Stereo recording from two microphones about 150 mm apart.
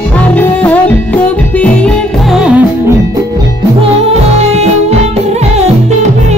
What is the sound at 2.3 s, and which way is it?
Music, 5° right (ahead or behind).